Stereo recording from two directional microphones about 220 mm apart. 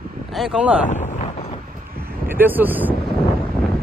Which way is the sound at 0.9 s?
30° left (ahead or behind).